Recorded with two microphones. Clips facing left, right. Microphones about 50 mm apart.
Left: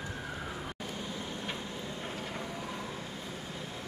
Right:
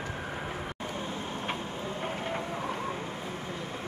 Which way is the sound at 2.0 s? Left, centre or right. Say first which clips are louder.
Right 8 dB; right.